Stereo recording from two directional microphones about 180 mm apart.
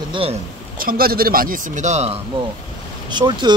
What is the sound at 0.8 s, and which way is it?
Speech, 55° right (ahead or behind).